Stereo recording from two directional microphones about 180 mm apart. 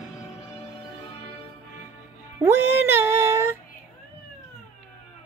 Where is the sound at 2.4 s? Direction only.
10° right (ahead or behind).